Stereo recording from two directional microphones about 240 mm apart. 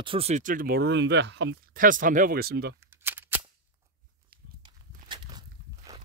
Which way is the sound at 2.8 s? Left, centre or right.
Centre.